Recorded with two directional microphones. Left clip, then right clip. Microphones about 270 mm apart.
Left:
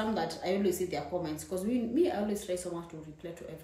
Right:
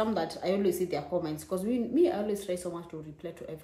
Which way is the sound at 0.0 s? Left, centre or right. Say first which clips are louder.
Right 3 dB; centre.